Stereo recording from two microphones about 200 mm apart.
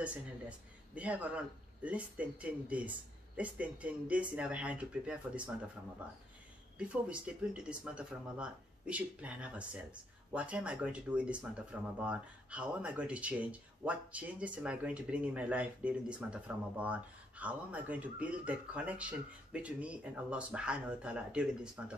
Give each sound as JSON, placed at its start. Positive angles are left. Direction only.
{"t": 0.0, "sound": "speech", "side_deg": -5}